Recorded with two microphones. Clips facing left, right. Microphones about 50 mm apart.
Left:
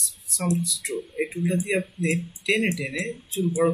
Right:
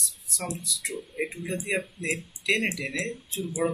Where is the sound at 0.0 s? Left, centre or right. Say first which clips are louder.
Left 6 dB; centre.